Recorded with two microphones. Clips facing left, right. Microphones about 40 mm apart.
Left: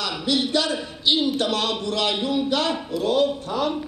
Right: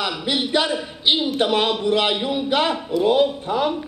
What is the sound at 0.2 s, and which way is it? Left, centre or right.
A man's voice, right.